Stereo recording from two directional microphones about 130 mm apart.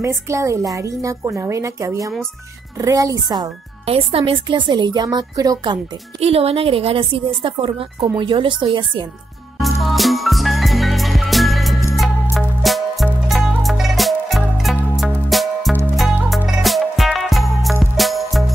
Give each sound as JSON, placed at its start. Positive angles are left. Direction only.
{"t": 0.0, "sound": "a woman's voice", "side_deg": -25}
{"t": 3.8, "sound": "a woman's voice", "side_deg": -50}
{"t": 6.1, "sound": "a woman's voice", "side_deg": -50}
{"t": 9.6, "sound": "music", "side_deg": 0}